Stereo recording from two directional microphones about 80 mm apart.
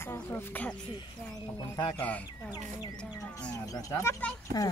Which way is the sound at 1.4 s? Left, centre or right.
Left.